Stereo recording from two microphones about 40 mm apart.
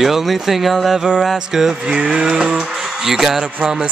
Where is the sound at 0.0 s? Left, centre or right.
Centre.